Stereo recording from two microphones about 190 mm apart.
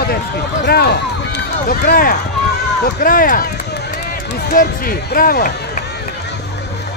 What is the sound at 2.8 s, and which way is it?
Run, 50° left (ahead or behind).